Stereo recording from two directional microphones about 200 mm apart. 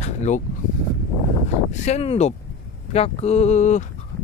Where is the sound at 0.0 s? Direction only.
35° left (ahead or behind).